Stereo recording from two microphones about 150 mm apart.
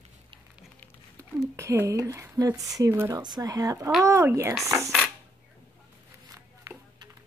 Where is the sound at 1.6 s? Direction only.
20° right (ahead or behind).